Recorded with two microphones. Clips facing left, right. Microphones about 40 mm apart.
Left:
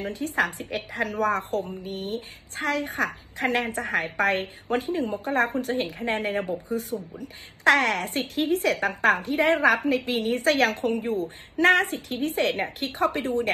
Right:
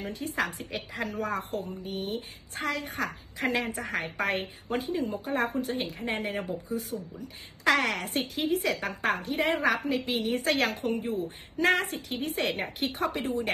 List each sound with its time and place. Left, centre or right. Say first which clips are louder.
0.0 s a woman's voice: left 5 dB; left